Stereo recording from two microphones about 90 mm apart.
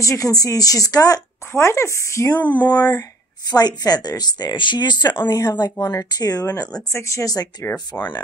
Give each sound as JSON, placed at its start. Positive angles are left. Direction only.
{"t": 0.0, "sound": "speech", "side_deg": 40}
{"t": 1.5, "sound": "speech", "side_deg": 30}
{"t": 2.5, "sound": "speech", "side_deg": 55}
{"t": 6.4, "sound": "speech", "side_deg": 30}
{"t": 7.9, "sound": "speech", "side_deg": 20}